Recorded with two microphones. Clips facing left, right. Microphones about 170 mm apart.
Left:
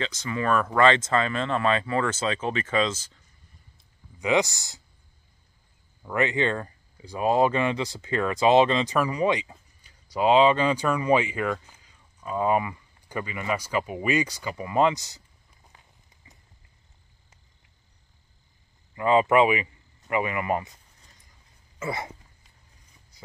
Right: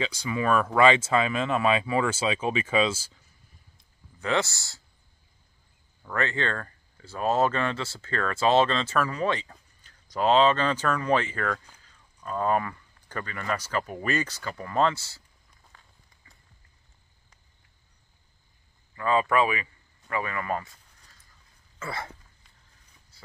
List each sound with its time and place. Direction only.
0.0 s speech: 10° right (ahead or behind)
4.2 s speech: 15° left (ahead or behind)
6.0 s speech: 15° left (ahead or behind)
18.9 s a man's voice: 20° left (ahead or behind)
21.7 s throat clearing: 20° left (ahead or behind)
23.1 s a sound: 15° left (ahead or behind)